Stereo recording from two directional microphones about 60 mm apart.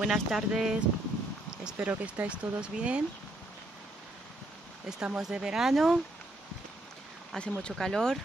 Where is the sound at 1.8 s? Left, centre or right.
Right.